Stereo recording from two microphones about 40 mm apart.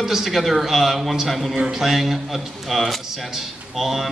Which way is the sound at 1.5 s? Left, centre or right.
Centre.